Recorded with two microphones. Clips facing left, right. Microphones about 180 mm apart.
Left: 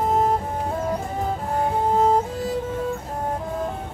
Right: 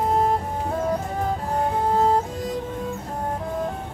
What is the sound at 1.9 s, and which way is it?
Music, centre (ahead or behind).